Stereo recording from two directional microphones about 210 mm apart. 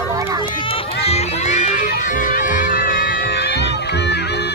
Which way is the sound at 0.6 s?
25° left (ahead or behind).